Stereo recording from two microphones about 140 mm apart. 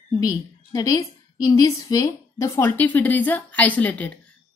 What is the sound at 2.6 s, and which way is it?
Speech, 15° left (ahead or behind).